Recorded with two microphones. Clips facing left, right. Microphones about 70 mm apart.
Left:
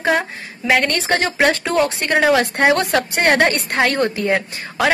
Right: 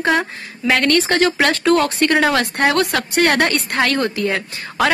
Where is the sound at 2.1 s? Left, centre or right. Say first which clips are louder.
Left 3 dB; centre.